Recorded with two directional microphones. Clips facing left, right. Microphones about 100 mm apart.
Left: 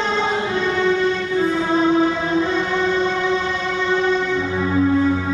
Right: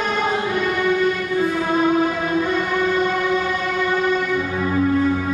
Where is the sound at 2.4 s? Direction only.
10° right (ahead or behind).